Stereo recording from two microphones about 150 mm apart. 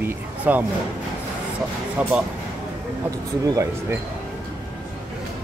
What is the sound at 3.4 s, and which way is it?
Speech, 25° right (ahead or behind).